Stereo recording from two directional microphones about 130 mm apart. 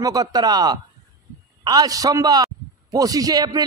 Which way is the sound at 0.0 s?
30° right (ahead or behind).